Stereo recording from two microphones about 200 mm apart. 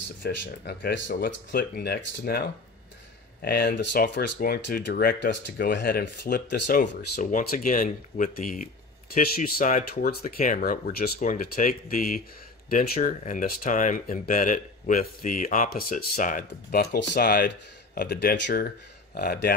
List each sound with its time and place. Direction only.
0.2 s speech: 60° left (ahead or behind)
1.1 s speech: 45° left (ahead or behind)